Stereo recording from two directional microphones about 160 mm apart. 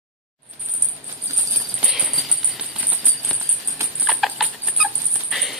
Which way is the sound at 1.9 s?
5° right (ahead or behind).